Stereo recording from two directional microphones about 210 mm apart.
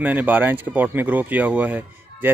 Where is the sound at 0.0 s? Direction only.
5° right (ahead or behind).